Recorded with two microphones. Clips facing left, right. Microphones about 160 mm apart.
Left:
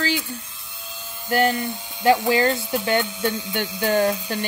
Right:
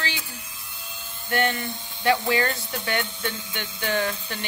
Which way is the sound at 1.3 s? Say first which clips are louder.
Left 5 dB; 35° left (ahead or behind).